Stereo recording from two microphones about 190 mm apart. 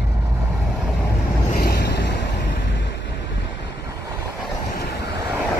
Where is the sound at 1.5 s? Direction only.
55° left (ahead or behind).